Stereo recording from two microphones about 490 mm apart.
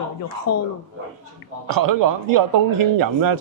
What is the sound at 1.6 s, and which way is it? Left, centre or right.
Speech, right.